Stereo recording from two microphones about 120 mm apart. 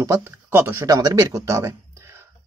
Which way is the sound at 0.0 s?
20° right (ahead or behind).